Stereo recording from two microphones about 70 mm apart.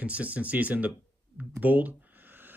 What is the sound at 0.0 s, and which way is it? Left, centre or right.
Speech, centre.